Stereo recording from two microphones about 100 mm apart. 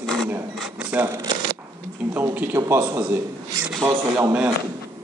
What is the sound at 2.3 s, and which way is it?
Speech, 20° right (ahead or behind).